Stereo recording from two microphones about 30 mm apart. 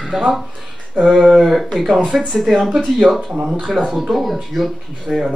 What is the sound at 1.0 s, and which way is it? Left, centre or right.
Speech, right.